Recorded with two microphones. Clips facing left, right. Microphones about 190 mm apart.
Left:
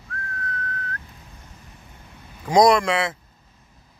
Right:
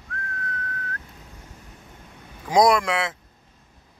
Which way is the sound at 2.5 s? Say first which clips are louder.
Left 2 dB; 5° right (ahead or behind).